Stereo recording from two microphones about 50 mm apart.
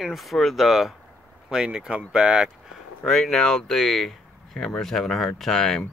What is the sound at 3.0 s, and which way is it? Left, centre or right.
Speech, centre.